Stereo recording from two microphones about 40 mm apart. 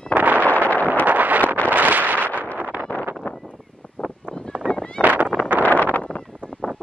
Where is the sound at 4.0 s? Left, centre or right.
Left.